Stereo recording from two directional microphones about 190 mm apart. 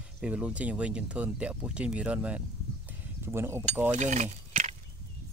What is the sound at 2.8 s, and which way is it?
Mechanisms, 10° right (ahead or behind).